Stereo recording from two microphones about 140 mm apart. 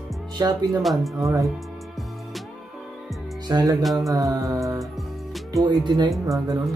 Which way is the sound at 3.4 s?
30° right (ahead or behind).